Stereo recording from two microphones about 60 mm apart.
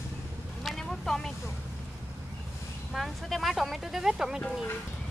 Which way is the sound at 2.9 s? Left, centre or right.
Centre.